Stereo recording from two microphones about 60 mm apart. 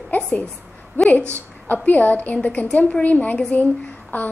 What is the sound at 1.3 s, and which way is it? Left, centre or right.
A woman's voice, left.